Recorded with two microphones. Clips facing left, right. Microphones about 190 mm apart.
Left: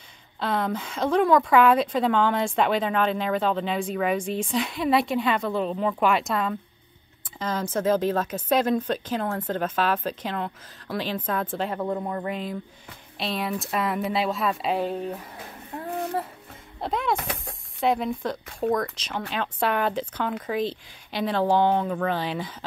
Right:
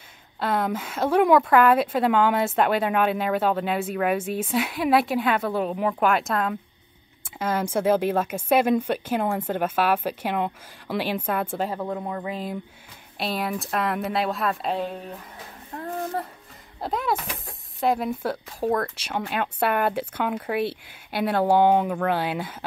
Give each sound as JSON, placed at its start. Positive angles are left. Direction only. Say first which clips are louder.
{"t": 0.4, "sound": "speech", "louder": "right 1 dB", "side_deg": -5}
{"t": 15.7, "sound": "a sound", "louder": "left 1 dB", "side_deg": 0}
{"t": 16.8, "sound": "speech", "louder": "even", "side_deg": 0}
{"t": 20.5, "sound": "speech", "louder": "right 1 dB", "side_deg": -60}
{"t": 21.3, "sound": "speech", "louder": "right 3 dB", "side_deg": -10}